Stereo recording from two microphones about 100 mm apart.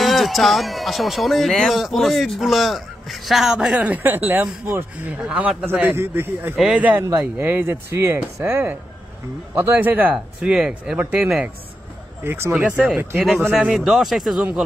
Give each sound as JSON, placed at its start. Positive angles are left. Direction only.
{"t": 0.0, "sound": "speech", "side_deg": 0}
{"t": 5.2, "sound": "speech", "side_deg": -10}
{"t": 5.8, "sound": "speech", "side_deg": -20}
{"t": 12.2, "sound": "speech", "side_deg": -25}
{"t": 12.5, "sound": "speech", "side_deg": -10}
{"t": 13.7, "sound": "speech", "side_deg": -5}